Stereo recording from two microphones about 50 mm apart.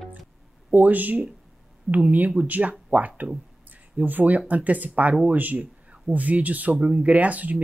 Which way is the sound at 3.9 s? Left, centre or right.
Right.